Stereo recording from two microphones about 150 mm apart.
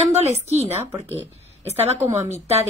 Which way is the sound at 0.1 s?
45° right (ahead or behind).